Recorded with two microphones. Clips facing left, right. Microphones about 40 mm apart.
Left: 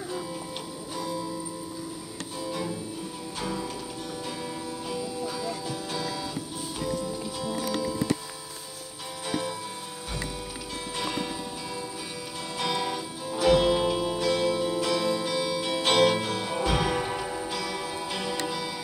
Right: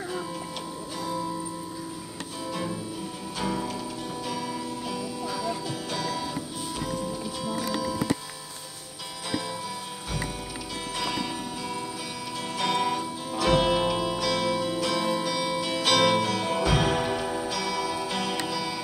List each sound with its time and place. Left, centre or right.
3.3 s music: right
4.8 s music: right
9.2 s music: right
14.2 s music: right
14.9 s music: right